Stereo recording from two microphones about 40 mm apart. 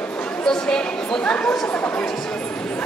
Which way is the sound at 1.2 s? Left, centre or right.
Left.